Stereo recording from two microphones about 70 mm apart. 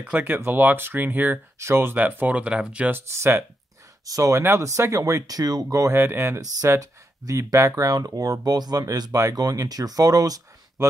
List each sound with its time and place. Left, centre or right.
0.0 s speech: right
1.6 s speech: right
2.0 s speech: right
2.9 s speech: right
4.0 s speech: right
4.4 s speech: right
5.9 s speech: right
6.8 s speech: right
9.1 s speech: right